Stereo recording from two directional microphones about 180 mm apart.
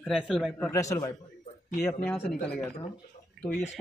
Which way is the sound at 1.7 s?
10° left (ahead or behind).